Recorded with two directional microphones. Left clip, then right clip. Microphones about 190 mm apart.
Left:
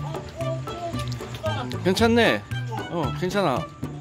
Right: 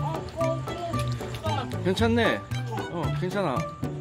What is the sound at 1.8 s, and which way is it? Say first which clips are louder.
Speech: left 5 dB; 20° left (ahead or behind).